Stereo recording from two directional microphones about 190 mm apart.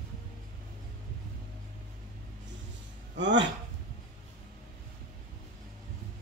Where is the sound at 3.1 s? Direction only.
70° right (ahead or behind).